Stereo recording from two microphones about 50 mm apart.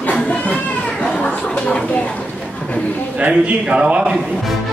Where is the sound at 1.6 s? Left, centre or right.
Left.